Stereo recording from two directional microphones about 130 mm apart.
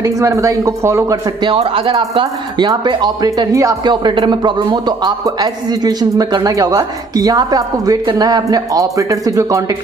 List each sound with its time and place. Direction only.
0.0 s speech: 25° right (ahead or behind)
1.4 s speech: 40° right (ahead or behind); by 9.6 s 25° right (ahead or behind)